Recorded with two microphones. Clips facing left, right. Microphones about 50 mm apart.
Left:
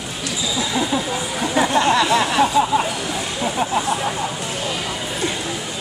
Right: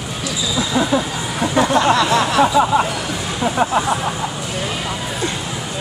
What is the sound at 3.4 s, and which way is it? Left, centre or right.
Speech, right.